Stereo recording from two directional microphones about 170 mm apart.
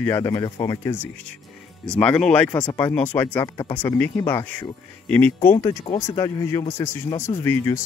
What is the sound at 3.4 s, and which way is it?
Speech, 25° left (ahead or behind).